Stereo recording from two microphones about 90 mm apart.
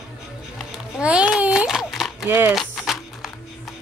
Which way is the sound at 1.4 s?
10° right (ahead or behind).